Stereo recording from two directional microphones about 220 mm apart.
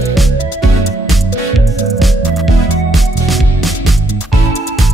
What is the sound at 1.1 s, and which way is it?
Music, centre (ahead or behind).